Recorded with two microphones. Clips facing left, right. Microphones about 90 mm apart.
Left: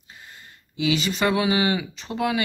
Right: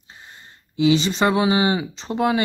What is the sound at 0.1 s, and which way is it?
Speech, 25° right (ahead or behind).